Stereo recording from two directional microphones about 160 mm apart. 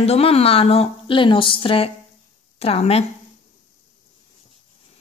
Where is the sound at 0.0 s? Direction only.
40° left (ahead or behind).